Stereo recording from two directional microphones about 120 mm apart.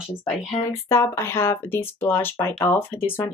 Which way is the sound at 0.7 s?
20° left (ahead or behind).